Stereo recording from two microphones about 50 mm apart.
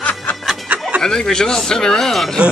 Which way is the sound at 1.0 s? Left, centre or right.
Centre.